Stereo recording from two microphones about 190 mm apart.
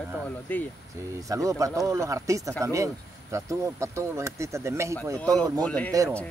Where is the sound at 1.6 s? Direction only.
15° right (ahead or behind).